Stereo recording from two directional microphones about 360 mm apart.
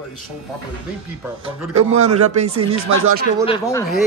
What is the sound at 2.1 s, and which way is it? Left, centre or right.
Speech, right.